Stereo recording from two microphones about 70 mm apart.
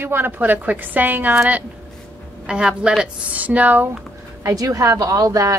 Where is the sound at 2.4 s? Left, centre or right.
Centre.